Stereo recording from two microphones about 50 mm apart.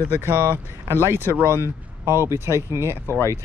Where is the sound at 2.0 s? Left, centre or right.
Right.